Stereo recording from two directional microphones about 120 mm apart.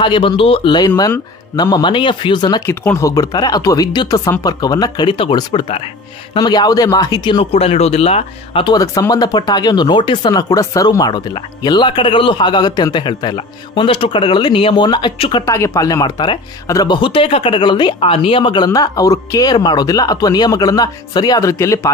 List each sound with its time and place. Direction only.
0.0 s speech: 45° left (ahead or behind)
2.6 s speech: 20° left (ahead or behind); by 5.9 s 50° left (ahead or behind)
6.3 s speech: 35° left (ahead or behind); by 8.6 s 55° left (ahead or behind)
8.6 s speech: 30° left (ahead or behind); by 15.4 s 45° left (ahead or behind)
15.4 s speech: 25° left (ahead or behind)